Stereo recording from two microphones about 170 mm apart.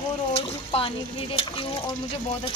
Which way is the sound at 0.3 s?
35° left (ahead or behind).